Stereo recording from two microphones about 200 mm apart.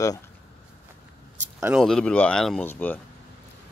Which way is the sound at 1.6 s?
Centre (ahead or behind).